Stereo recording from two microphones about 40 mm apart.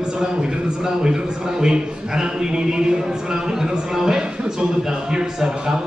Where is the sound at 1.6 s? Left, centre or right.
Centre.